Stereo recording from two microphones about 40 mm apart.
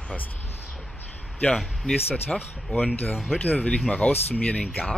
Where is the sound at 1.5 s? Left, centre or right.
Centre.